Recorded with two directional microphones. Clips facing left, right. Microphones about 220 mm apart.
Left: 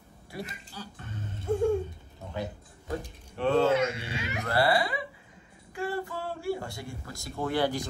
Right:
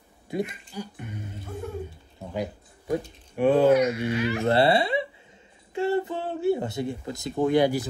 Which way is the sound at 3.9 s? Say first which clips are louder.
Right 10 dB; 30° left (ahead or behind).